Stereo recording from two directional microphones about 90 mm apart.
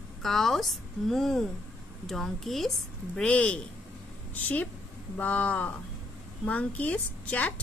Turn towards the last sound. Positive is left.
turn(degrees=15)  # may be behind; listen again after turning